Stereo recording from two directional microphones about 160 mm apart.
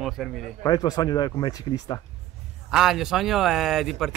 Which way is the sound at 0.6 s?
25° left (ahead or behind).